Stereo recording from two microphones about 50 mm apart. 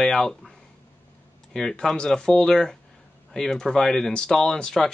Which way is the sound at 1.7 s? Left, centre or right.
Centre.